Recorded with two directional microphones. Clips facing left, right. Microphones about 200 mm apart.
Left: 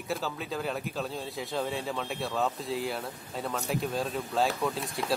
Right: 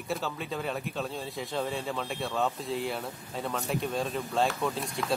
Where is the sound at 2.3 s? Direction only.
Centre (ahead or behind).